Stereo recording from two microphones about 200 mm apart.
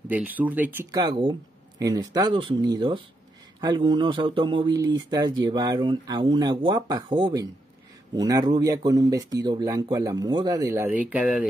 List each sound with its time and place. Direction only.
0.1 s speech: 10° right (ahead or behind)
0.9 s speech: 20° right (ahead or behind); by 11.4 s 5° right (ahead or behind)